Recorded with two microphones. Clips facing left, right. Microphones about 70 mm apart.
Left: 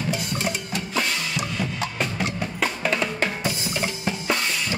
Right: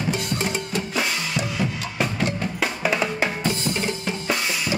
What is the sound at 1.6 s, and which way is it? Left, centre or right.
Percussion, centre.